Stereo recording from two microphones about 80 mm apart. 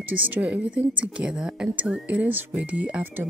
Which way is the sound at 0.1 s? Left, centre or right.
Centre.